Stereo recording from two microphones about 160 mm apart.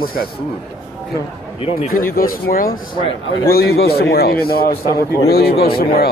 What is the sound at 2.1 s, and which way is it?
Speech, 65° left (ahead or behind).